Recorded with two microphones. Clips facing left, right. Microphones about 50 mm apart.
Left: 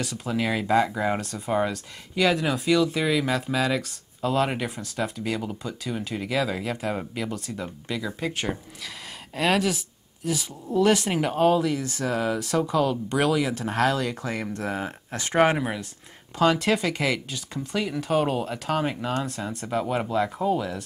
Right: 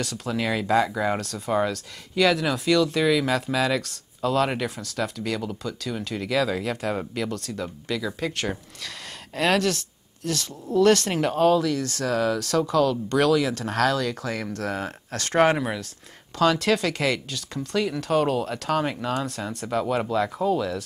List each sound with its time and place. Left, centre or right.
0.0 s speech: centre
5.4 s speech: centre